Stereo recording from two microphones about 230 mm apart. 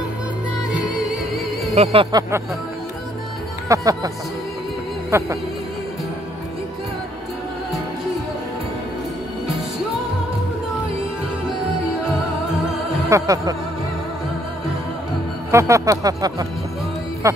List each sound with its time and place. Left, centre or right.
1.8 s speech: right
3.6 s music: centre
5.1 s music: centre
13.1 s music: centre
15.5 s music: centre